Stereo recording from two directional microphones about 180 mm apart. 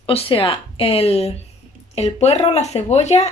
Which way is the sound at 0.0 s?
30° left (ahead or behind).